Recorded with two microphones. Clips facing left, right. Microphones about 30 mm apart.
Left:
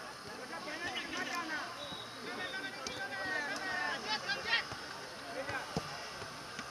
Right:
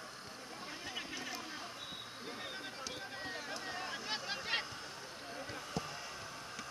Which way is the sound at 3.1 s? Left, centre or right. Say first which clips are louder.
Left 6 dB; centre.